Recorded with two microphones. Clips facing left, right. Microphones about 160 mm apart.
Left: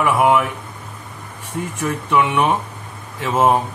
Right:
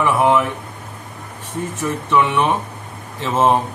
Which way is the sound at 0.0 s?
10° left (ahead or behind).